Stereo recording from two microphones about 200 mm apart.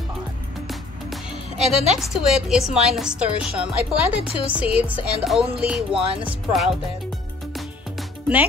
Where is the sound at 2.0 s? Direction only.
Centre (ahead or behind).